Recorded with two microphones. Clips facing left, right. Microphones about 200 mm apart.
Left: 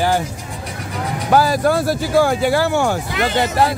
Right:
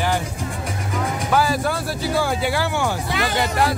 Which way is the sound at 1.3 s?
40° left (ahead or behind).